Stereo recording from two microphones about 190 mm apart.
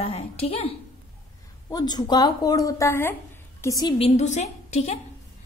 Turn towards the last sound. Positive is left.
turn(degrees=35)  # may be behind; listen again after turning